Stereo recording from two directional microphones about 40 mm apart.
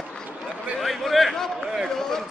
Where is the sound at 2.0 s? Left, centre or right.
Centre.